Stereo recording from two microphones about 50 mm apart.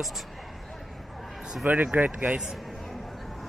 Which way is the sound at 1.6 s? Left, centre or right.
Right.